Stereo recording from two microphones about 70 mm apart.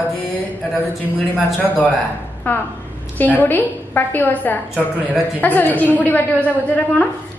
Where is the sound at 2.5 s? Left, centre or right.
Left.